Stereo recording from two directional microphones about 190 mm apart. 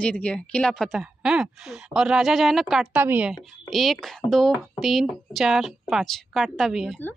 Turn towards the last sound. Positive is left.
turn(degrees=0)  # may be behind; listen again after turning